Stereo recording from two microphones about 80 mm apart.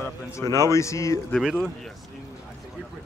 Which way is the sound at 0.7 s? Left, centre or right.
Left.